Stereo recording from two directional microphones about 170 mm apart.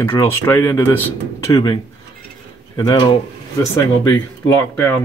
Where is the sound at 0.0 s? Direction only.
15° left (ahead or behind).